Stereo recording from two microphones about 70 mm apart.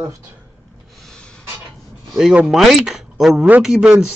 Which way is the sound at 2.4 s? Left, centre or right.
Centre.